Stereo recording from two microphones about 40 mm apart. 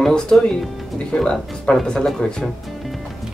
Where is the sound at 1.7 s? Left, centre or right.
Left.